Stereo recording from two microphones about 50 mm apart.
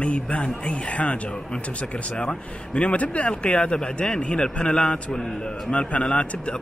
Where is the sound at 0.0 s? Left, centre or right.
Left.